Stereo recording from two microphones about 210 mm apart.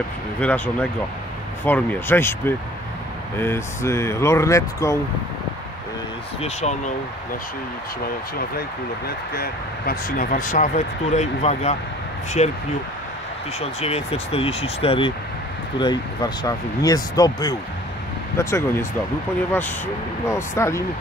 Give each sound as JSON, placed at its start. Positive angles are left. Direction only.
{"t": 0.4, "sound": "speech", "side_deg": 5}
{"t": 6.4, "sound": "speech", "side_deg": 30}
{"t": 9.3, "sound": "speech", "side_deg": 45}
{"t": 13.6, "sound": "speech", "side_deg": 30}
{"t": 20.2, "sound": "speech", "side_deg": 15}